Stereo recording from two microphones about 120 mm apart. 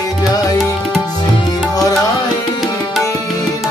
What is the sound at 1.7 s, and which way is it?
Music, 30° left (ahead or behind).